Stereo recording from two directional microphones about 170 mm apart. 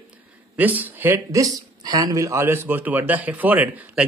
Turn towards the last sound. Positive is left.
turn(degrees=-10)  # may be behind; listen again after turning